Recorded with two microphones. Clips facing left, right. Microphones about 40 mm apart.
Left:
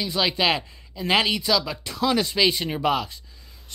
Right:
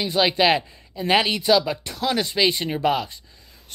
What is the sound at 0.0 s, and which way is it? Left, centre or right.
Speech, centre.